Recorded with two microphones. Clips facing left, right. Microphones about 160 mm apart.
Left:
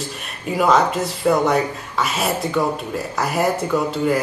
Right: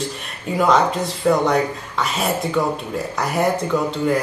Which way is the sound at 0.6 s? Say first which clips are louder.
Even; 5° left (ahead or behind).